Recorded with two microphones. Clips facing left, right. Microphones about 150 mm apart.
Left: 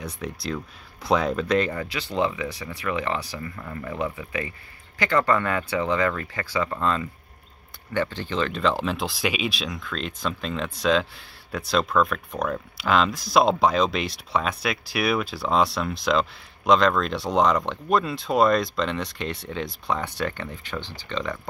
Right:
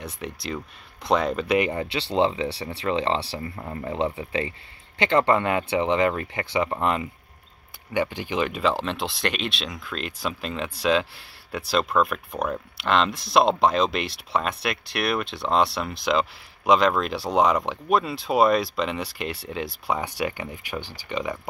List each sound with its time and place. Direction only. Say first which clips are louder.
0.0 s speech: left 1 dB; centre (ahead or behind)
1.7 s speech: right 3 dB; 30° right (ahead or behind); by 21.4 s 10° right (ahead or behind)